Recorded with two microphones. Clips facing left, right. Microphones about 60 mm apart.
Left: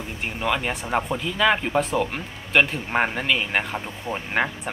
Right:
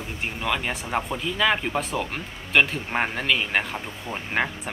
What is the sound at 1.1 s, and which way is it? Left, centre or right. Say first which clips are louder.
Speech: left 2 dB; centre.